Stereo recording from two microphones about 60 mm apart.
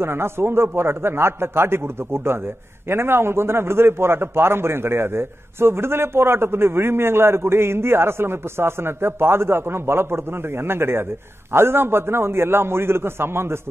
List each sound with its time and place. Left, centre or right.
0.0 s a man's voice: right